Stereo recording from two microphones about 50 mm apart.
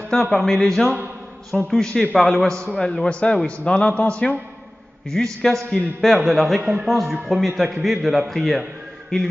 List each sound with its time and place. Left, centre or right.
0.1 s a man's voice: centre; by 4.1 s left
5.1 s a man's voice: centre
9.1 s speech: centre